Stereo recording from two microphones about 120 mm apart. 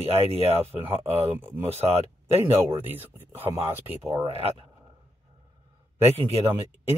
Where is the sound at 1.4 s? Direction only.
15° right (ahead or behind).